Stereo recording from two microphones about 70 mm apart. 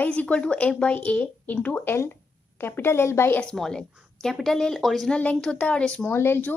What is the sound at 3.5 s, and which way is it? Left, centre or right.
Speech, centre.